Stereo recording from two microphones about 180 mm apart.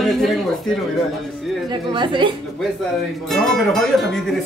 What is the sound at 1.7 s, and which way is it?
Speech, 25° right (ahead or behind).